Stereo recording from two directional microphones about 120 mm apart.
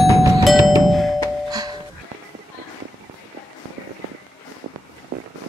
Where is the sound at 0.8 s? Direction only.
Centre (ahead or behind).